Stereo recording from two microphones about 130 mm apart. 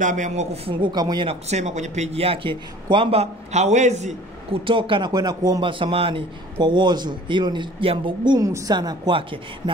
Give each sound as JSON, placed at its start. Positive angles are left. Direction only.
{"t": 0.0, "sound": "speech", "side_deg": -70}
{"t": 0.7, "sound": "a man's voice", "side_deg": -35}
{"t": 1.3, "sound": "speech", "side_deg": -60}
{"t": 4.5, "sound": "a man's voice", "side_deg": -40}
{"t": 8.5, "sound": "speech", "side_deg": -25}
{"t": 8.7, "sound": "a man's voice", "side_deg": -35}